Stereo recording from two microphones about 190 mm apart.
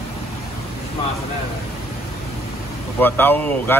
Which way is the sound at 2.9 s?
10° left (ahead or behind).